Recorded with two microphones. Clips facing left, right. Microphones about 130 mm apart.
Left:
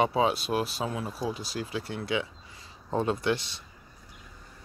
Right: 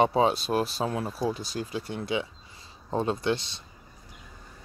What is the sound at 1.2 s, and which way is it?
Speech, 5° left (ahead or behind).